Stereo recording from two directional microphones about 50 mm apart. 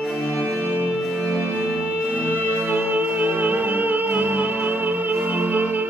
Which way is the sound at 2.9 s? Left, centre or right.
Right.